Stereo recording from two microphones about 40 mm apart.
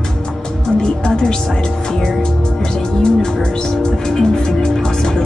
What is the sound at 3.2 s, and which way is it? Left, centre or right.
Music, centre.